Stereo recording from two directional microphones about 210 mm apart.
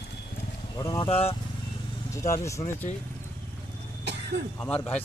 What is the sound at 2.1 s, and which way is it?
Speech, 15° left (ahead or behind).